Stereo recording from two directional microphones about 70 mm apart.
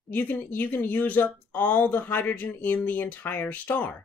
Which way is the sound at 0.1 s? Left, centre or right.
Left.